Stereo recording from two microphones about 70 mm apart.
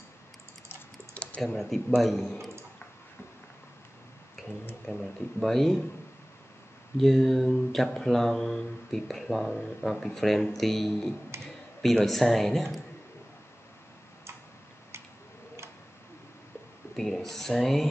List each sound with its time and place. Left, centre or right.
1.1 s computer keyboard: centre
1.9 s a man's voice: centre
4.4 s a sound: centre
4.8 s speech: centre
7.0 s speech: centre
16.9 s speech: centre